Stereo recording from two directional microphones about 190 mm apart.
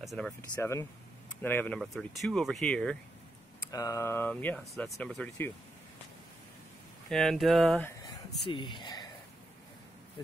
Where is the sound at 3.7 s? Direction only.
15° left (ahead or behind).